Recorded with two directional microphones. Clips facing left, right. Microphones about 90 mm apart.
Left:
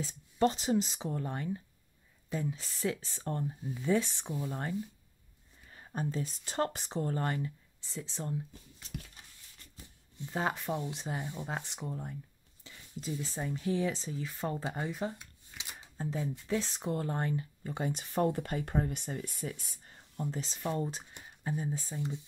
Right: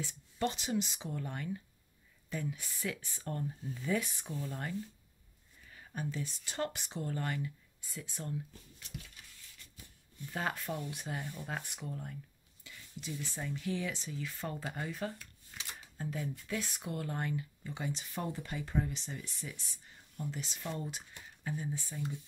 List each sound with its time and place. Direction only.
0.0 s speech: 35° left (ahead or behind)
3.4 s speech: 20° left (ahead or behind)
5.7 s speech: 35° left (ahead or behind)
10.1 s speech: 20° left (ahead or behind)
17.6 s speech: 45° left (ahead or behind); by 22.2 s 25° left (ahead or behind)